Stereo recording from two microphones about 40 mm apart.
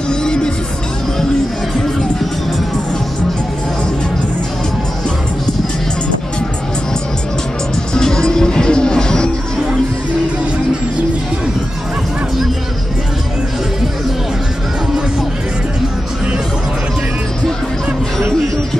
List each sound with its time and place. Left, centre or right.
0.1 s music: centre
7.9 s music: centre